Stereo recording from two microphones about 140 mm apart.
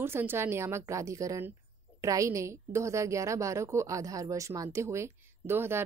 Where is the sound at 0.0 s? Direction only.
15° right (ahead or behind).